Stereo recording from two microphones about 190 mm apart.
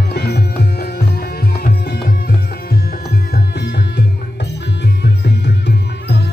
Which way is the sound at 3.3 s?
60° left (ahead or behind).